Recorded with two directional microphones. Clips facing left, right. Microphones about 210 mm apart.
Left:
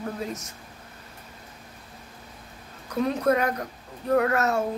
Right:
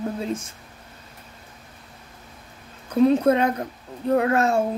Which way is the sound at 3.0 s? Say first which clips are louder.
Right 6 dB; 25° right (ahead or behind).